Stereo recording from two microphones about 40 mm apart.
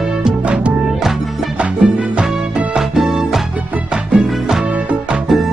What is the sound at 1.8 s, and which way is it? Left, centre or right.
Music, right.